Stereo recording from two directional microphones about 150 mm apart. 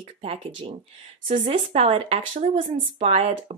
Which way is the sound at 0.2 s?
40° right (ahead or behind).